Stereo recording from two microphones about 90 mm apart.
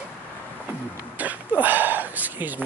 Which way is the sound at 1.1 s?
20° right (ahead or behind).